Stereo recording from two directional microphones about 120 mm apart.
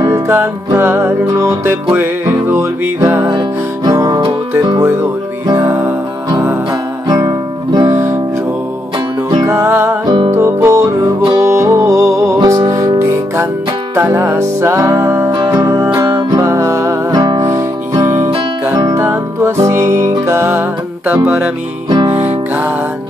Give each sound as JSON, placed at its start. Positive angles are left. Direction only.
{"t": 0.0, "sound": "music", "side_deg": -20}
{"t": 3.3, "sound": "music", "side_deg": -35}
{"t": 7.1, "sound": "guitar", "side_deg": -30}
{"t": 9.4, "sound": "music", "side_deg": -25}
{"t": 10.0, "sound": "music", "side_deg": -40}
{"t": 10.3, "sound": "music", "side_deg": -25}
{"t": 13.9, "sound": "music", "side_deg": -20}